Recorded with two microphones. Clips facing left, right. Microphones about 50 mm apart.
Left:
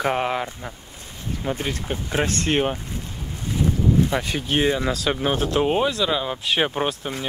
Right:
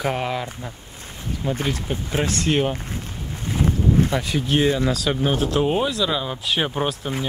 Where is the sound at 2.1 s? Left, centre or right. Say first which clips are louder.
Even; left.